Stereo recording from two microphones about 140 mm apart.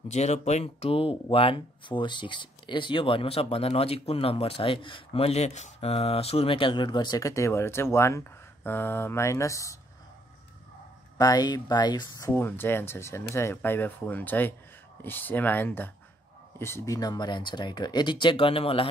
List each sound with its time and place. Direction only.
0.1 s speech: 55° left (ahead or behind); by 9.8 s 20° left (ahead or behind)
11.1 s speech: 30° left (ahead or behind)
12.3 s speech: 15° left (ahead or behind); by 18.9 s 40° left (ahead or behind)